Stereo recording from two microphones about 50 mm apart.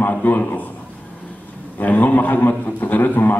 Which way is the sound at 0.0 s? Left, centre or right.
Left.